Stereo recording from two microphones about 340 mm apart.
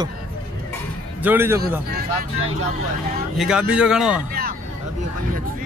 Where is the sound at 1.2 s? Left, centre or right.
Centre.